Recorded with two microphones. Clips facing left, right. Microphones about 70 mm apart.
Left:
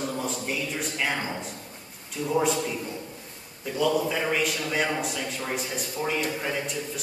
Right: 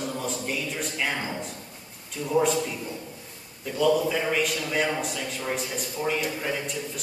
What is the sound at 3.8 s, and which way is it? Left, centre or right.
A man's voice, centre.